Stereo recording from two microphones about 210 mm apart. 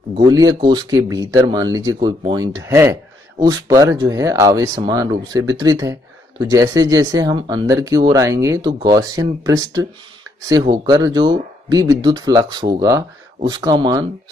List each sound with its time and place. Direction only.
0.2 s speech: 15° right (ahead or behind)